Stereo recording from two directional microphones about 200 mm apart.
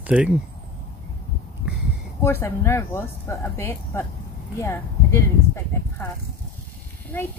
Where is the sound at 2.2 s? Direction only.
10° left (ahead or behind).